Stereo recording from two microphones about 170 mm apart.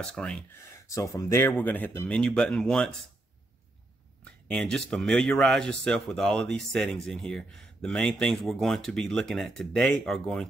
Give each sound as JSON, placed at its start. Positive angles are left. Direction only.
{"t": 0.0, "sound": "speech", "side_deg": 5}
{"t": 0.8, "sound": "speech", "side_deg": 20}
{"t": 4.2, "sound": "speech", "side_deg": 5}